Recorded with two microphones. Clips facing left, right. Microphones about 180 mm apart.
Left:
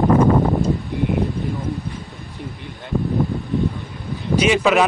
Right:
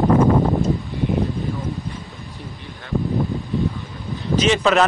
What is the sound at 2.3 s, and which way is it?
Speech, 15° left (ahead or behind).